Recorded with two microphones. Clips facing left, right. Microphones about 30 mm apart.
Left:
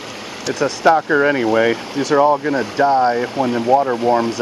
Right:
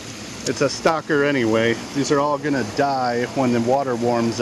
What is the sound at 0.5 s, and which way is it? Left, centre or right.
Speech, centre.